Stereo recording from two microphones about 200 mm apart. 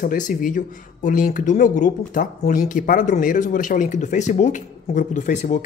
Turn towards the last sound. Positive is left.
turn(degrees=40)  # may be behind; listen again after turning